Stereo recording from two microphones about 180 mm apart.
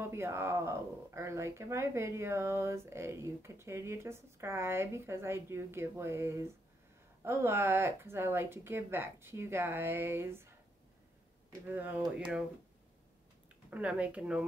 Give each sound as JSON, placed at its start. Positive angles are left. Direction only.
{"t": 0.0, "sound": "speech", "side_deg": -15}
{"t": 11.6, "sound": "speech", "side_deg": -10}
{"t": 13.7, "sound": "speech", "side_deg": -5}